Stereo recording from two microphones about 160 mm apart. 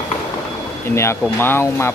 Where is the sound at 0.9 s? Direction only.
15° left (ahead or behind).